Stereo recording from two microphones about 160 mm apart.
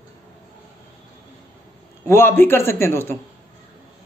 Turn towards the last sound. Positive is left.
turn(degrees=15)  # may be behind; listen again after turning